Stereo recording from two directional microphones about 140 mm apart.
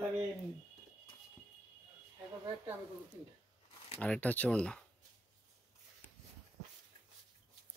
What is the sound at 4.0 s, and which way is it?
Speech, 10° left (ahead or behind).